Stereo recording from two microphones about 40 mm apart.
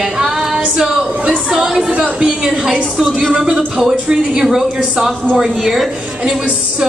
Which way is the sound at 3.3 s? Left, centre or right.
Centre.